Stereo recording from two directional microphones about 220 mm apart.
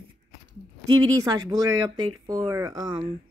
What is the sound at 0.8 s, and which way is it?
Speech, 20° right (ahead or behind).